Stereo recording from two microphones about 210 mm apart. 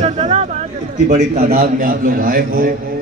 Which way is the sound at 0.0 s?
30° right (ahead or behind).